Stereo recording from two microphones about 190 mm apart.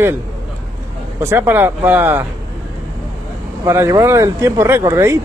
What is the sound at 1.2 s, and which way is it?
Speech, 10° right (ahead or behind).